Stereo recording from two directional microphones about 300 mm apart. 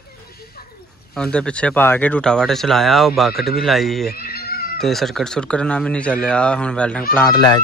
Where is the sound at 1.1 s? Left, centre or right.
Centre.